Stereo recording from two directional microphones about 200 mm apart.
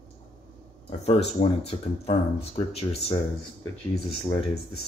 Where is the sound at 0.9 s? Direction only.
30° left (ahead or behind).